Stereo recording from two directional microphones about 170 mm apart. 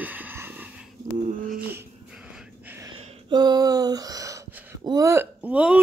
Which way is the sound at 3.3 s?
25° right (ahead or behind).